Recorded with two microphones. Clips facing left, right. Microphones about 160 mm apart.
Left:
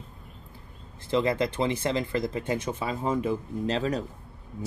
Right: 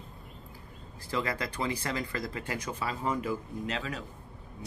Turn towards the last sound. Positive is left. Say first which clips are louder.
# left 8 dB
turn(degrees=35)  # may be behind; listen again after turning